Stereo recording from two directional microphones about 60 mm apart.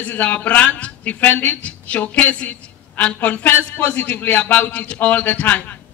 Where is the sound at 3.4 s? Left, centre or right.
Left.